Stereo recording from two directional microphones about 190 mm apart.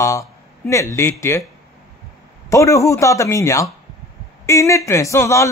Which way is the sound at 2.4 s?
15° left (ahead or behind).